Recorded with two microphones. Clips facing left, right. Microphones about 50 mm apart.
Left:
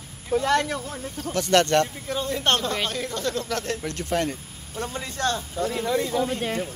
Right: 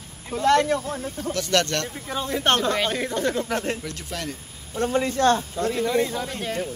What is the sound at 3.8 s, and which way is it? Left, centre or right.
Speech, left.